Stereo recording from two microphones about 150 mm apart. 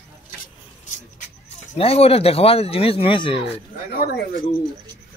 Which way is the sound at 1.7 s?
40° left (ahead or behind).